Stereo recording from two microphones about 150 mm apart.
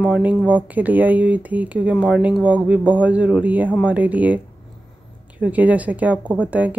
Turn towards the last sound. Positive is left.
turn(degrees=-10)  # may be behind; listen again after turning